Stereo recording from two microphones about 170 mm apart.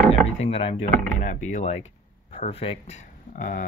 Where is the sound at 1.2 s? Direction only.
50° left (ahead or behind).